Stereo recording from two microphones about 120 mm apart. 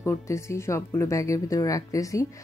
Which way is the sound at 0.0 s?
25° left (ahead or behind).